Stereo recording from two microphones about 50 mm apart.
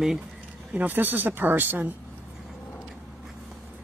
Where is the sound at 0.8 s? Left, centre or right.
Right.